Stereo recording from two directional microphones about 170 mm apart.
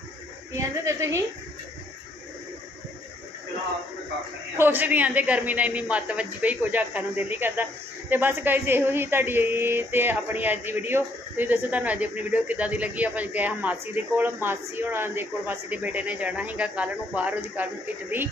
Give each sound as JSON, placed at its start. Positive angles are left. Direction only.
{"t": 0.6, "sound": "speech", "side_deg": -15}
{"t": 4.6, "sound": "speech", "side_deg": -10}